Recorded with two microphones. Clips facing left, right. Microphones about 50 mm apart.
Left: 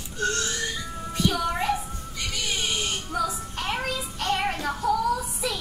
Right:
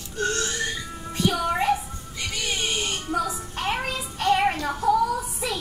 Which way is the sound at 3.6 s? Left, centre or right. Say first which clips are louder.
Right 2 dB; centre.